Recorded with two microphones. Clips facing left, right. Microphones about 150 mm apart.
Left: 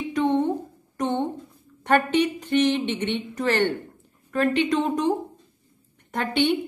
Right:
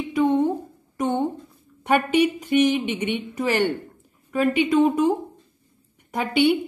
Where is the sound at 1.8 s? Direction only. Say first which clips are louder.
Right 1 dB; 10° right (ahead or behind).